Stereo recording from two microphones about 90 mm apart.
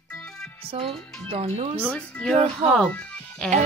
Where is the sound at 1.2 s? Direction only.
90° right.